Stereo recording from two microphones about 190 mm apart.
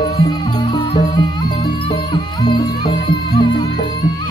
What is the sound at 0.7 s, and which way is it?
Music, 25° left (ahead or behind).